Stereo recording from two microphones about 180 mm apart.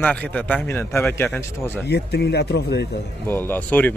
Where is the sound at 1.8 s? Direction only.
70° left (ahead or behind).